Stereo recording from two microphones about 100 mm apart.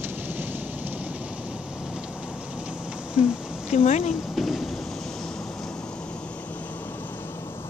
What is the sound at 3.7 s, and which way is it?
Speech, 90° left.